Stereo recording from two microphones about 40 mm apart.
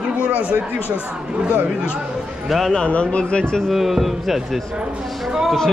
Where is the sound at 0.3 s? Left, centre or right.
Right.